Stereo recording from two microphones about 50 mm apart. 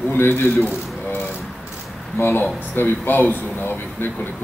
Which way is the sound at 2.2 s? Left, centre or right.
Left.